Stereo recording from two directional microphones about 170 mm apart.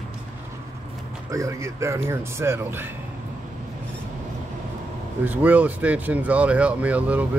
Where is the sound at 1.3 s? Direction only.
20° right (ahead or behind).